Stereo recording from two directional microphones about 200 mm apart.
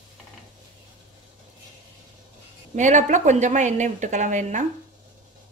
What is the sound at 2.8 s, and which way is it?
Speech, 40° right (ahead or behind).